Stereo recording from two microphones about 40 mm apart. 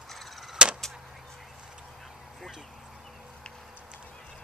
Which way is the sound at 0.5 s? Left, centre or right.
Right.